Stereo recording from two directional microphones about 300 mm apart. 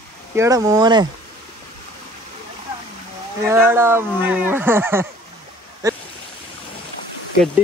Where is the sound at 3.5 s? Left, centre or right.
Centre.